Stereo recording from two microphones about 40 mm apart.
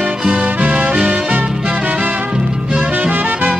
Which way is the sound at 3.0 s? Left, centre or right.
Right.